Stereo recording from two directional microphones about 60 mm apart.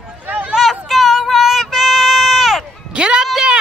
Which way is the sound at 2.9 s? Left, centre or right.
Centre.